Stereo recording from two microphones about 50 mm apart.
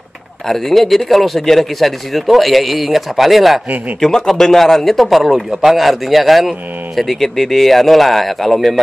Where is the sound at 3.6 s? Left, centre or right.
Right.